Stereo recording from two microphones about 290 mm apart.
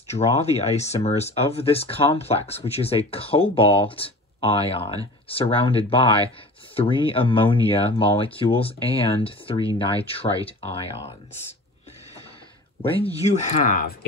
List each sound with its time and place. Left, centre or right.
0.1 s speech: left
12.8 s speech: centre